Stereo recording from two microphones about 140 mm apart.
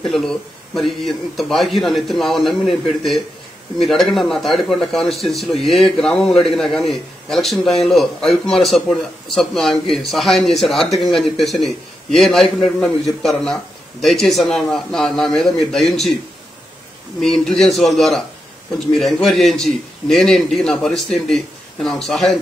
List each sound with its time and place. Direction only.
0.0 s a man's voice: centre (ahead or behind)
17.2 s a man's voice: 5° left (ahead or behind)